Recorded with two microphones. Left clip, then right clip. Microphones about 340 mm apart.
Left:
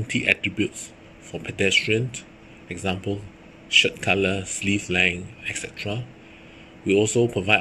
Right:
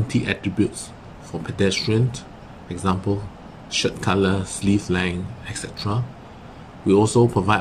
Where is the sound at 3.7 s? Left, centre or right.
Centre.